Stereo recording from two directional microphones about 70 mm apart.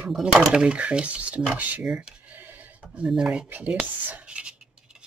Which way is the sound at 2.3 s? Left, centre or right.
Right.